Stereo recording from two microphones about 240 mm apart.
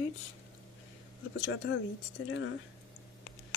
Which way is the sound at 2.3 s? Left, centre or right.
Left.